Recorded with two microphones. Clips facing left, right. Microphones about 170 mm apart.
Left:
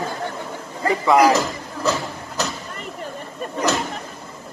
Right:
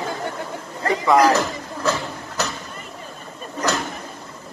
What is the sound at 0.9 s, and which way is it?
Speech, 10° left (ahead or behind).